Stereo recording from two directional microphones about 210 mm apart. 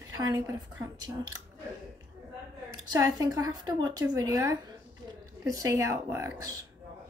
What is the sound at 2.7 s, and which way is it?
Speech, 15° right (ahead or behind).